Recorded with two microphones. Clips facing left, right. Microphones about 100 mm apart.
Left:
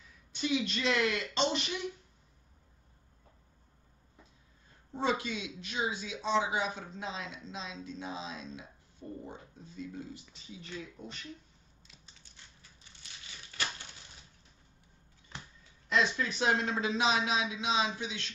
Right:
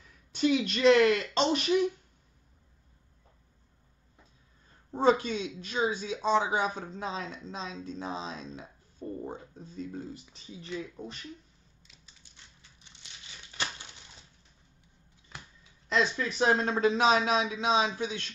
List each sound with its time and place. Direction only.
0.4 s a man's voice: 50° right (ahead or behind)
4.9 s speech: 40° right (ahead or behind)
15.9 s a man's voice: 35° right (ahead or behind)